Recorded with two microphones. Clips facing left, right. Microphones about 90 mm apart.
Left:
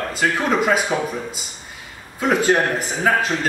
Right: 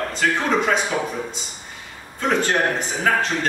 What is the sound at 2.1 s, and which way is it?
Speech, 5° left (ahead or behind).